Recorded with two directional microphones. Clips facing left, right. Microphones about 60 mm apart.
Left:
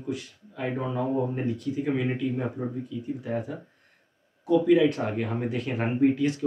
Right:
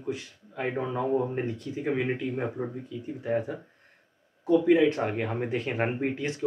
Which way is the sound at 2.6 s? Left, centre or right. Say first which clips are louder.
Left 1 dB; right.